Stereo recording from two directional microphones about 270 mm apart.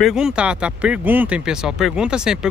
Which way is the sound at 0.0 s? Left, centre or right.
Centre.